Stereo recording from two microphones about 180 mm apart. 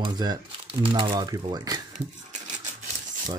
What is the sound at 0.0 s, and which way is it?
Speech, 20° right (ahead or behind).